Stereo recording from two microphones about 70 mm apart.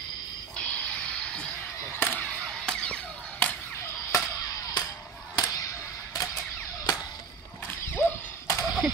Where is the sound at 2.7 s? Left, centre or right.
Centre.